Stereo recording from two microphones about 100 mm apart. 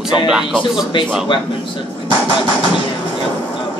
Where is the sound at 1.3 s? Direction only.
50° left (ahead or behind).